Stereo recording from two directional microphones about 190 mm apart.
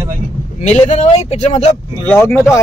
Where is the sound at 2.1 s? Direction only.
10° left (ahead or behind).